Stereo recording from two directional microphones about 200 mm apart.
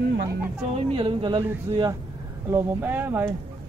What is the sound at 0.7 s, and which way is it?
Speech, 25° right (ahead or behind).